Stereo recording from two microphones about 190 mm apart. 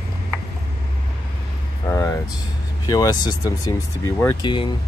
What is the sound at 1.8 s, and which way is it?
Speech, 15° left (ahead or behind).